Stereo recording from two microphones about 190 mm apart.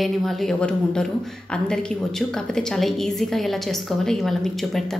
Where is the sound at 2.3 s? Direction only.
5° left (ahead or behind).